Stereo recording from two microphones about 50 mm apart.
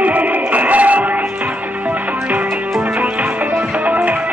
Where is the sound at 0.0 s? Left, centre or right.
Right.